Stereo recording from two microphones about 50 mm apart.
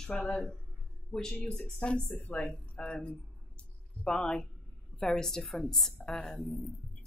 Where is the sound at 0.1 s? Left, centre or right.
Left.